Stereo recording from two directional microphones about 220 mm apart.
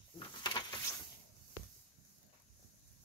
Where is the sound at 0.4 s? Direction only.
20° left (ahead or behind).